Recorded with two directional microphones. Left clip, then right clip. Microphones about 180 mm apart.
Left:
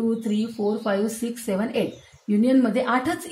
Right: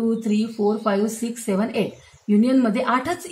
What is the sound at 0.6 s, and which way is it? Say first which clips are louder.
A woman's voice: right 3 dB; 15° right (ahead or behind).